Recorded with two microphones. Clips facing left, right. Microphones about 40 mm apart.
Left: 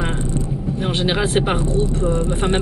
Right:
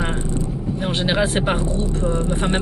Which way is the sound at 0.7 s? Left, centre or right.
Centre.